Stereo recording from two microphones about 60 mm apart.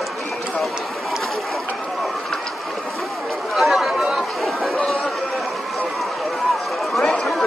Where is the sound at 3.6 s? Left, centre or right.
Centre.